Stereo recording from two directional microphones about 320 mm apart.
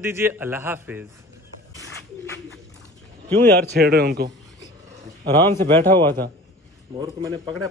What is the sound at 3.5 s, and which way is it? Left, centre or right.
Speech, right.